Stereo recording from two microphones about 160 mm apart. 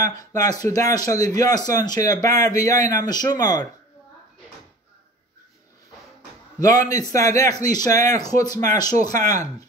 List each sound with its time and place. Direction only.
0.0 s a man's voice: 20° left (ahead or behind)
6.9 s a man's voice: 20° left (ahead or behind)